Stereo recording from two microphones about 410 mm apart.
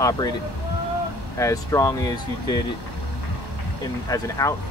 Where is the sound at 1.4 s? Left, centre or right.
Centre.